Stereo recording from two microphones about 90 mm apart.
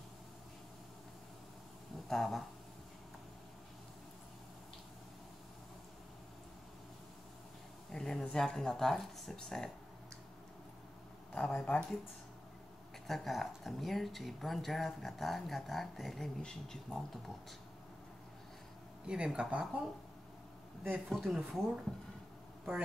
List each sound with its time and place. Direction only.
2.0 s speech: 5° left (ahead or behind)
7.9 s speech: 5° left (ahead or behind)
11.3 s speech: 15° left (ahead or behind)
13.0 s speech: 5° left (ahead or behind)
19.0 s speech: 10° right (ahead or behind)
21.1 s speech: 5° right (ahead or behind)